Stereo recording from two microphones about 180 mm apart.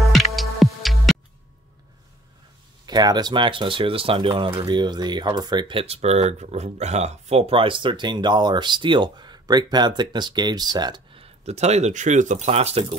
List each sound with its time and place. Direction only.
0.0 s music: centre (ahead or behind)
2.9 s speech: 20° right (ahead or behind)